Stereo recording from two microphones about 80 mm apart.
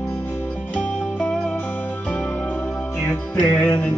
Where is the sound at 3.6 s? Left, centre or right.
Centre.